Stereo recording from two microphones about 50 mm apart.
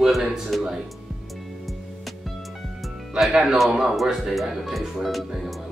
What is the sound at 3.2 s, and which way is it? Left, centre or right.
Speech, centre.